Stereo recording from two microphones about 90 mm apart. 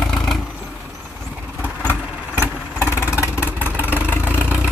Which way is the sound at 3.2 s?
20° right (ahead or behind).